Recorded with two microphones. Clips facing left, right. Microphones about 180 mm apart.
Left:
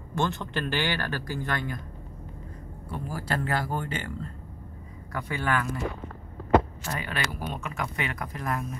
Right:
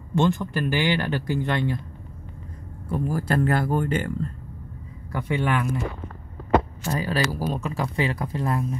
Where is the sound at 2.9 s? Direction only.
45° right (ahead or behind).